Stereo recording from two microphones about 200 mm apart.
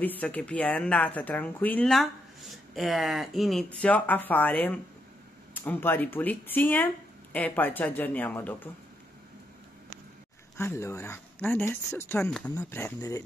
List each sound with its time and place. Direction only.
0.0 s speech: 10° left (ahead or behind)
10.6 s speech: 15° left (ahead or behind)